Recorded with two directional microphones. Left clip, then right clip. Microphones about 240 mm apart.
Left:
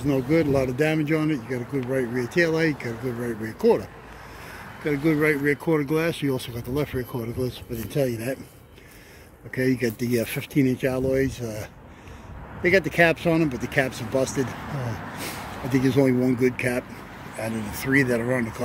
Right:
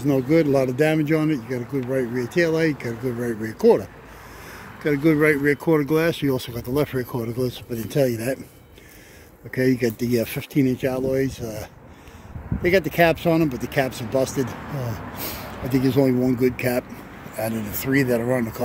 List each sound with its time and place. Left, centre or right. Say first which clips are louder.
0.0 s speech: right 3 dB; centre
4.8 s speech: right 4 dB; right
9.5 s speech: right 3 dB; right
12.6 s speech: right 1 dB; centre